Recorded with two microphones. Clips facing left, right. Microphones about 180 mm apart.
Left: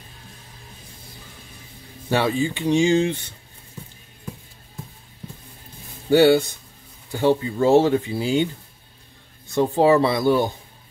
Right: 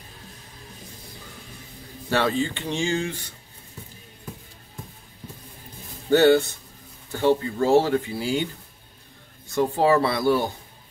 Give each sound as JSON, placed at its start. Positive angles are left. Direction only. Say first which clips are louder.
{"t": 2.0, "sound": "speech", "louder": "left 2 dB", "side_deg": 15}
{"t": 6.0, "sound": "speech", "louder": "left 2 dB", "side_deg": 10}
{"t": 9.6, "sound": "speech", "louder": "left 3 dB", "side_deg": 20}